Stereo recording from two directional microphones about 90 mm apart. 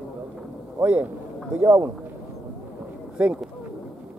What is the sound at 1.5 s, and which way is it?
Speech, 30° right (ahead or behind).